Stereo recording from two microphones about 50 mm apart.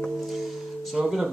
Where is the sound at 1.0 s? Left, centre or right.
Centre.